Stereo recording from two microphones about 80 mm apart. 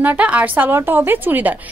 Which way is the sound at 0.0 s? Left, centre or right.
Centre.